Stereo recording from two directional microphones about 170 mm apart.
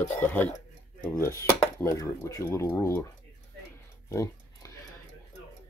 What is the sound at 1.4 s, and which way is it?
Speech, 15° left (ahead or behind).